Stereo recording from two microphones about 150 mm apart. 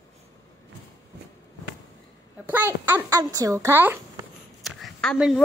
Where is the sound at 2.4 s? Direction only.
15° right (ahead or behind).